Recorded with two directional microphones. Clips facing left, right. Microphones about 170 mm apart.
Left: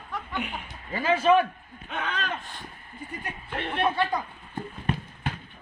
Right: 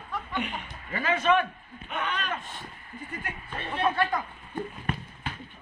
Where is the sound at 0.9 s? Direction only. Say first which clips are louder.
Left 4 dB; 30° left (ahead or behind).